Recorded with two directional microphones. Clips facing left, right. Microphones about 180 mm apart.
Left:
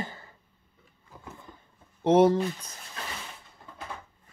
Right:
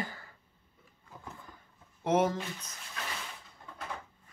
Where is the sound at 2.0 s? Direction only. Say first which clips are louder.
Left 8 dB; 30° left (ahead or behind).